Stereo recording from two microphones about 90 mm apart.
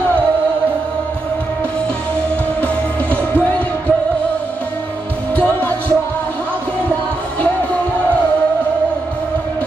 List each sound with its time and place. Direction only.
2.6 s music: 15° left (ahead or behind)
5.3 s music: 15° left (ahead or behind)